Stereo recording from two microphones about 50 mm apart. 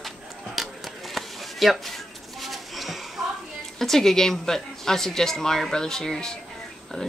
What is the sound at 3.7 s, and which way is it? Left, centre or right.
Speech, centre.